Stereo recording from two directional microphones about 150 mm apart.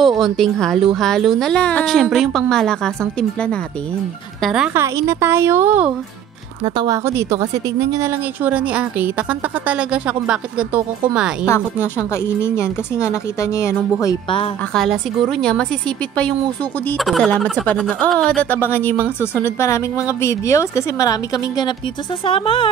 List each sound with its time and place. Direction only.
0.2 s a woman's voice: centre (ahead or behind)
4.7 s a woman's voice: 20° right (ahead or behind)
6.6 s a woman's voice: 25° right (ahead or behind); by 10.8 s 5° right (ahead or behind)
11.4 s speech: 15° left (ahead or behind)
14.7 s a woman's voice: centre (ahead or behind)
16.9 s a woman's voice: centre (ahead or behind); by 21.7 s 25° left (ahead or behind)
22.2 s speech: 40° left (ahead or behind)